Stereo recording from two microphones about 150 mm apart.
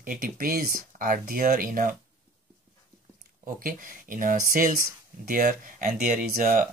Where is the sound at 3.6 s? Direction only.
65° right (ahead or behind).